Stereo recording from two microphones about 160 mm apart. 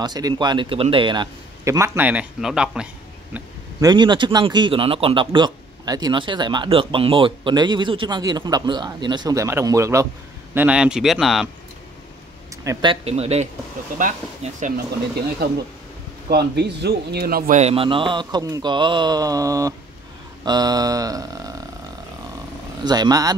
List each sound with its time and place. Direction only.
0.0 s speech: 25° right (ahead or behind); by 2.9 s 5° right (ahead or behind)
3.8 s a man's voice: 30° right (ahead or behind); by 11.4 s centre (ahead or behind)
12.6 s speech: 30° right (ahead or behind)
13.9 s speech: 55° right (ahead or behind)
16.3 s speech: 90° right; by 17.6 s 70° right (ahead or behind)
17.6 s speech: 40° right (ahead or behind); by 21.5 s 20° right (ahead or behind)
22.8 s speech: 25° right (ahead or behind)